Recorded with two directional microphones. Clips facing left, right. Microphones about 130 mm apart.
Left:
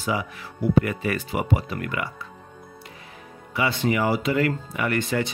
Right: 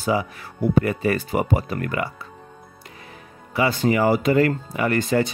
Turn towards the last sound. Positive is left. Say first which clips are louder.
# right 4 dB
turn(degrees=-35)  # may be behind; listen again after turning